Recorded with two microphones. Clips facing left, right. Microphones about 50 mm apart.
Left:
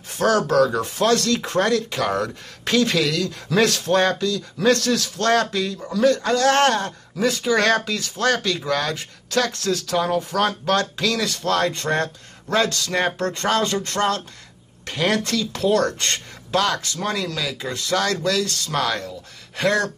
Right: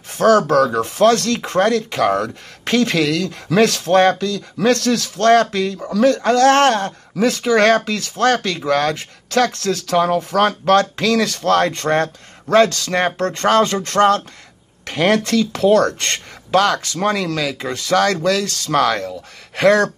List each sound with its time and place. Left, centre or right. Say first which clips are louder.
0.2 s speech: right 5 dB; right